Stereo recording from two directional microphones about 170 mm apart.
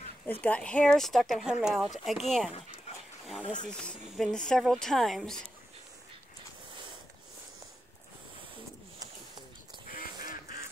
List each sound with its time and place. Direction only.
0.3 s speech: 10° left (ahead or behind)
3.6 s speech: 5° left (ahead or behind)
9.9 s duck: 55° left (ahead or behind)